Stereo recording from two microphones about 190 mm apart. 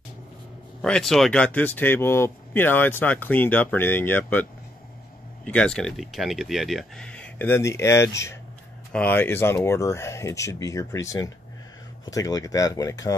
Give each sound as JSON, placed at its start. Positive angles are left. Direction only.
{"t": 0.8, "sound": "speech", "side_deg": 5}